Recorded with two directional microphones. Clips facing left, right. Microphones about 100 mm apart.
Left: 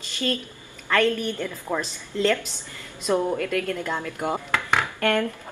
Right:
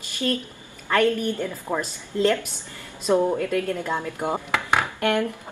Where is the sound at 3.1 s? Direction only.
15° right (ahead or behind).